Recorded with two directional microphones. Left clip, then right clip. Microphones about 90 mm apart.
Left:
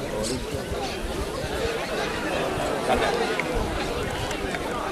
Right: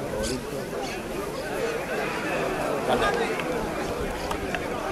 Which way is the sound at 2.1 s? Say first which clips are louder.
Left 1 dB; centre (ahead or behind).